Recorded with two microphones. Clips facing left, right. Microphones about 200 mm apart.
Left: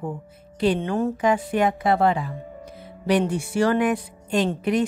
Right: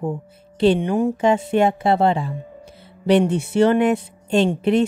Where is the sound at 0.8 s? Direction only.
15° right (ahead or behind).